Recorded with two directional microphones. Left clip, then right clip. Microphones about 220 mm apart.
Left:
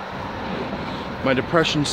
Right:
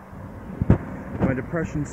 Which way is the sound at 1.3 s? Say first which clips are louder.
Left 12 dB; 20° left (ahead or behind).